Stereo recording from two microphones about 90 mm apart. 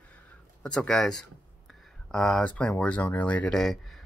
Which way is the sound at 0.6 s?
10° left (ahead or behind).